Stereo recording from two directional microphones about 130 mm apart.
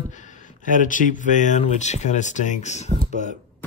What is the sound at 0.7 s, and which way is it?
Speech, 80° left.